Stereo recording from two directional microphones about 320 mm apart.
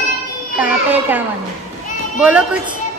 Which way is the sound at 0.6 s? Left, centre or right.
Centre.